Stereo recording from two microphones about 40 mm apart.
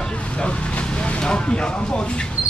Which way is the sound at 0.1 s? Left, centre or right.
Left.